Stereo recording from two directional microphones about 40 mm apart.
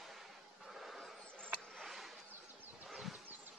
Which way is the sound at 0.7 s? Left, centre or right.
Centre.